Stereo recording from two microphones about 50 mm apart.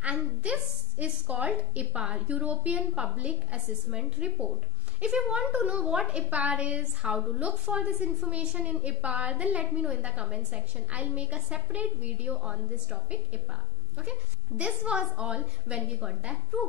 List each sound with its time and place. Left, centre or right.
0.0 s a woman's voice: right
14.6 s a woman's voice: right